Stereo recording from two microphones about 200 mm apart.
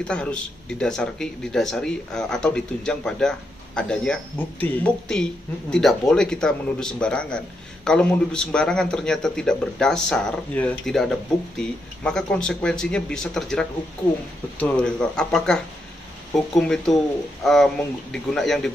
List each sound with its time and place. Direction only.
0.1 s speech: 5° left (ahead or behind)